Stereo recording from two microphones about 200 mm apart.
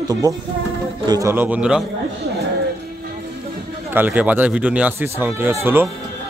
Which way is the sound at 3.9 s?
10° right (ahead or behind).